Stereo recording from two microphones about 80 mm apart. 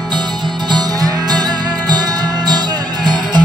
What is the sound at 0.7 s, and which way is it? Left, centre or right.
Music, right.